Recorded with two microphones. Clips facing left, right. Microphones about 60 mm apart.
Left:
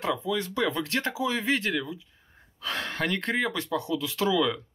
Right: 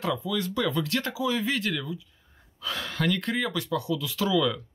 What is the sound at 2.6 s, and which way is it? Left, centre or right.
Speech, left.